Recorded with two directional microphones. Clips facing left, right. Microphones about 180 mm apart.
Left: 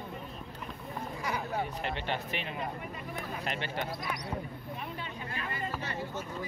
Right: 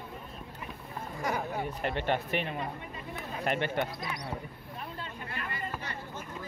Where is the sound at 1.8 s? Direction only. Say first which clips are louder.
Right 4 dB; 50° right (ahead or behind).